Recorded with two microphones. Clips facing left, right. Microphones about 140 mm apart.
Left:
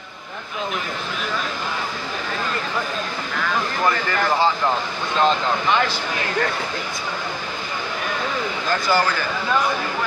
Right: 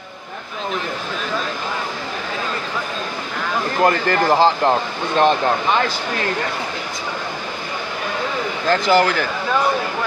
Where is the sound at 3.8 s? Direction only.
40° right (ahead or behind).